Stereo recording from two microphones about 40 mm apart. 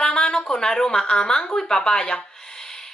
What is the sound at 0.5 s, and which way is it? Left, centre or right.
Speech, centre.